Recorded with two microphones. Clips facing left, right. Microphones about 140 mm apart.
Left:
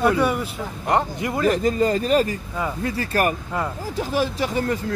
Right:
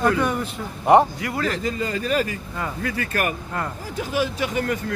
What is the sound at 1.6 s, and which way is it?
Speech, 40° left (ahead or behind).